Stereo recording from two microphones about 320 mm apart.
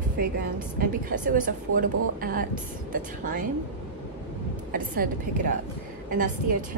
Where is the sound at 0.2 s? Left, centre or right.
Right.